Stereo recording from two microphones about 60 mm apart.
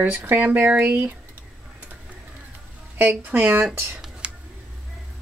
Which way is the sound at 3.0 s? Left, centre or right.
Right.